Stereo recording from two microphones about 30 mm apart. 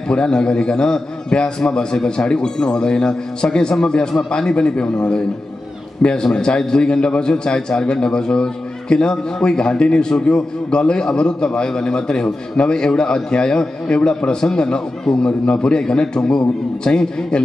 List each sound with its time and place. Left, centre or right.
0.1 s a man's voice: left